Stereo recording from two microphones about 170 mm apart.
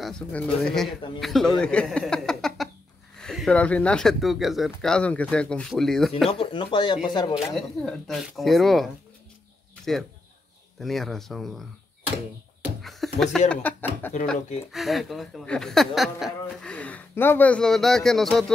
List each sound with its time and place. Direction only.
0.0 s speech: 5° left (ahead or behind)
6.4 s speech: 30° left (ahead or behind)
7.3 s speech: centre (ahead or behind)
10.8 s speech: centre (ahead or behind)
12.8 s a sound: centre (ahead or behind)
13.5 s speech: 10° left (ahead or behind)
14.7 s speech: centre (ahead or behind)